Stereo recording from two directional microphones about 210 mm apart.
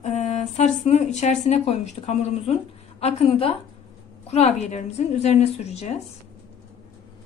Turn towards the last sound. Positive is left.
turn(degrees=30)  # may be behind; listen again after turning